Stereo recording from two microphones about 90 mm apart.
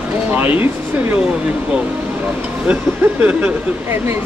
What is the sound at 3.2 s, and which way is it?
Speech, 25° right (ahead or behind).